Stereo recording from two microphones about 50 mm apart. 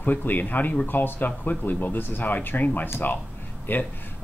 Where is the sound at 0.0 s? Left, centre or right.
Left.